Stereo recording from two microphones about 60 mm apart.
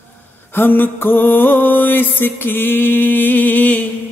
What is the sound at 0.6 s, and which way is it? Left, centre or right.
Music, left.